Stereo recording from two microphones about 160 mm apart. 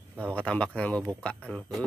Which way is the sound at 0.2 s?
10° left (ahead or behind).